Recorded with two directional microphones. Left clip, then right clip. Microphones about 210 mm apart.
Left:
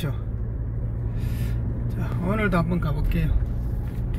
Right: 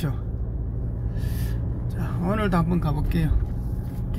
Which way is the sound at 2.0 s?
15° right (ahead or behind).